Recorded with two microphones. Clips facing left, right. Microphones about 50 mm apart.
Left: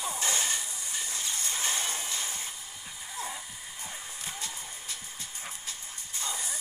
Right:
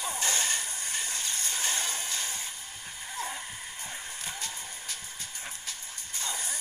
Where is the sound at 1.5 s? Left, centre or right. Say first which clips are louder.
Even; left.